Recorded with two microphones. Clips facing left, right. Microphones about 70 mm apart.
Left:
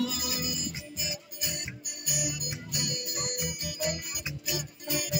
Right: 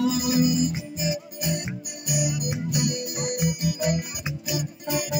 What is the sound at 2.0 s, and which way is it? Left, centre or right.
Organ, centre.